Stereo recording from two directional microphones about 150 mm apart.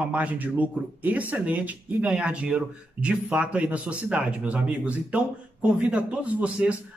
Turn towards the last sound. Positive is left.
turn(degrees=-10)  # may be behind; listen again after turning